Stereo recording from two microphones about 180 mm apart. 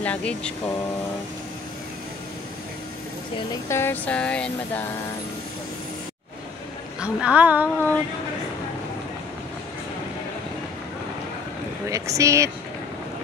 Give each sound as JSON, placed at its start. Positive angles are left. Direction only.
{"t": 0.0, "sound": "speech", "side_deg": 5}
{"t": 3.6, "sound": "speech", "side_deg": 15}
{"t": 7.0, "sound": "speech", "side_deg": -5}
{"t": 11.9, "sound": "speech", "side_deg": -15}